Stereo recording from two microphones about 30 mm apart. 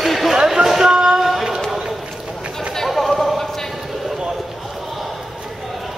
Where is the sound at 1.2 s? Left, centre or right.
Centre.